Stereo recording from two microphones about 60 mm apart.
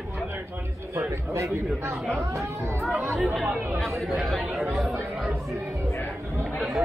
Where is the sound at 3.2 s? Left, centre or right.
Centre.